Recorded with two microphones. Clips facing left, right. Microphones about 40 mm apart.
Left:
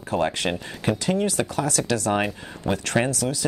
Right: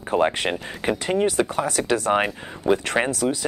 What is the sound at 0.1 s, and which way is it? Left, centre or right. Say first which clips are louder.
Speech: right 3 dB; right.